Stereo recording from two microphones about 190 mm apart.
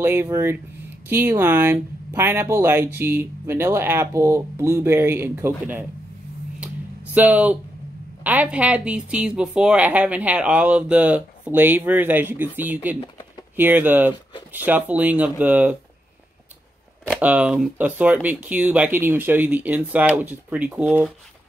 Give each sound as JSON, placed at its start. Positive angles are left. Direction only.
{"t": 0.0, "sound": "speech", "side_deg": -15}
{"t": 7.2, "sound": "speech", "side_deg": -10}
{"t": 17.1, "sound": "speech", "side_deg": -5}